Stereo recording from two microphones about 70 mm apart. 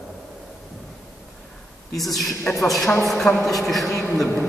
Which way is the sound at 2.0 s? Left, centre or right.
Centre.